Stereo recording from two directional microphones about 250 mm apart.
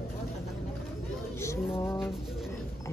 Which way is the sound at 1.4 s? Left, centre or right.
Centre.